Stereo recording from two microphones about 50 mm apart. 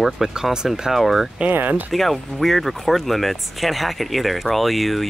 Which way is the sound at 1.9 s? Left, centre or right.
Centre.